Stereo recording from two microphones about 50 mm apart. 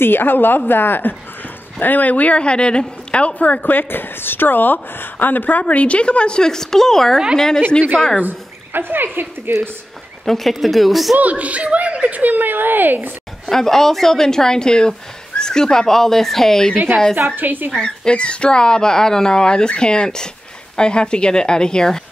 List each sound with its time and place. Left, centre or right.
0.0 s a woman's voice: left; by 7.6 s centre
8.2 s speech: right
10.2 s a woman's voice: centre
11.1 s speech: right
13.5 s speech: centre
17.4 s speech: right
17.8 s speech: centre